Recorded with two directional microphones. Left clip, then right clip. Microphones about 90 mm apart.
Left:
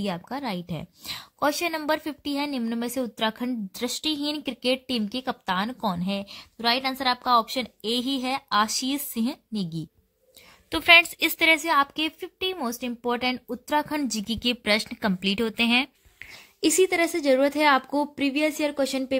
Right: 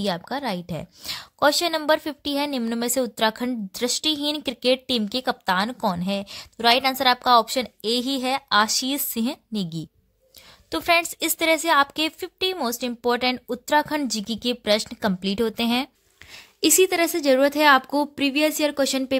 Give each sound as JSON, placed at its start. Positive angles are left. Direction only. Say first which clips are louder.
{"t": 0.0, "sound": "a woman's voice", "louder": "right 5 dB", "side_deg": -20}
{"t": 6.3, "sound": "a woman's voice", "louder": "right 6 dB", "side_deg": -45}
{"t": 15.1, "sound": "speech", "louder": "left 2 dB", "side_deg": -30}
{"t": 16.3, "sound": "a woman's voice", "louder": "right 3 dB", "side_deg": -10}